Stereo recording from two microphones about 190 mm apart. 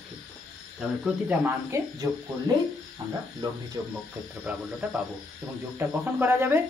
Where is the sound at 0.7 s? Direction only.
5° right (ahead or behind).